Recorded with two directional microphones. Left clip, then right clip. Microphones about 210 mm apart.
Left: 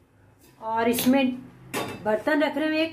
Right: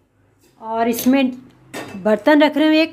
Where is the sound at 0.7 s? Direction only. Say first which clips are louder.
Right 5 dB; 50° right (ahead or behind).